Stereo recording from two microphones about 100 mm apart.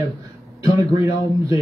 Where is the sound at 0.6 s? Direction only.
30° right (ahead or behind).